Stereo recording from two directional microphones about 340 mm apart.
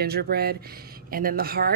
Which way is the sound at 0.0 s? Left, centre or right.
Right.